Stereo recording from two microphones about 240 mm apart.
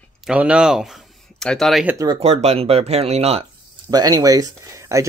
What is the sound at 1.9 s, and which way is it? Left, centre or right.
Speech, centre.